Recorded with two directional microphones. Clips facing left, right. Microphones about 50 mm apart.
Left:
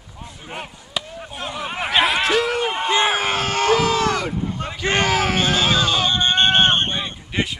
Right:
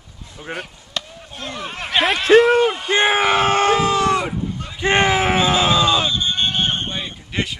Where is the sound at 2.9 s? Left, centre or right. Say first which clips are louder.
Right 1 dB; right.